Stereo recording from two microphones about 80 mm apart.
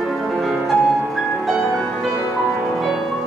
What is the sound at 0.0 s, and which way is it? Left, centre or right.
Music, centre.